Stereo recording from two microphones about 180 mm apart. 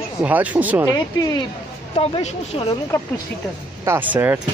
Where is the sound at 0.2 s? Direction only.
10° right (ahead or behind).